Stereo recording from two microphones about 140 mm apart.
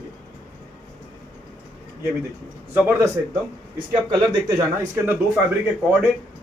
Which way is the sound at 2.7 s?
15° right (ahead or behind).